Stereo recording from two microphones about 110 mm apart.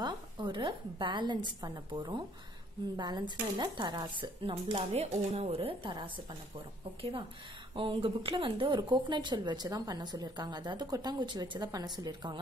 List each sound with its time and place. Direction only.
0.0 s speech: 45° right (ahead or behind)
5.0 s speech: 85° right; by 5.8 s 65° right (ahead or behind)
7.0 s speech: 55° right (ahead or behind)